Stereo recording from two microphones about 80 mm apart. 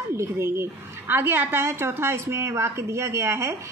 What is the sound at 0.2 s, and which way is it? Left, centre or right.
A woman's voice, right.